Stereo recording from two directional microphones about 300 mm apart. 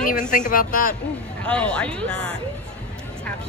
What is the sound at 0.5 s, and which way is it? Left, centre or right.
Speech, left.